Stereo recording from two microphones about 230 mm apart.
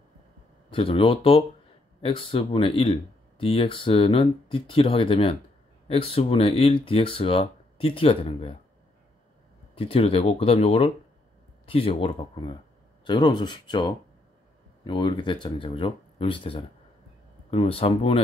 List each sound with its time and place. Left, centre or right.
0.7 s speech: left
9.8 s speech: left